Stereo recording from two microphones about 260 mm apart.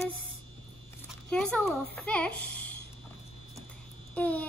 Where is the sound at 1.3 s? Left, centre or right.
Centre.